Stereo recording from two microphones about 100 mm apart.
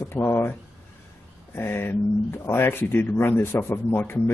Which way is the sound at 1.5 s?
20° left (ahead or behind).